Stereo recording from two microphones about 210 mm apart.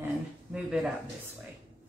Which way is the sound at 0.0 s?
5° right (ahead or behind).